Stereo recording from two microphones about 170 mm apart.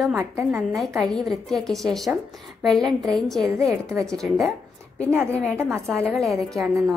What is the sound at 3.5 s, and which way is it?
Speech, 20° right (ahead or behind).